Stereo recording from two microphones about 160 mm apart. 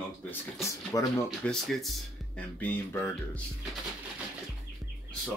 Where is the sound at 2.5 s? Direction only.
10° left (ahead or behind).